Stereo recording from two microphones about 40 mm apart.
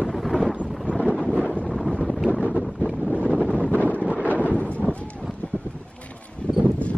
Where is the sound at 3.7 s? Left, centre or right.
Left.